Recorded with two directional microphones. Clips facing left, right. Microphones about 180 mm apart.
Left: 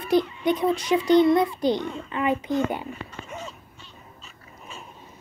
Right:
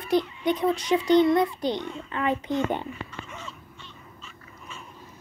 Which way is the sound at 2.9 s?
40° left (ahead or behind).